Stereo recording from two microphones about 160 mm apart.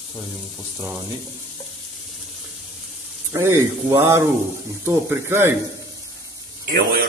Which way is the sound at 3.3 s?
15° right (ahead or behind).